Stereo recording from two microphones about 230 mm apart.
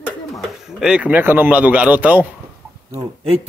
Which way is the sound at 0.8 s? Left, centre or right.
Centre.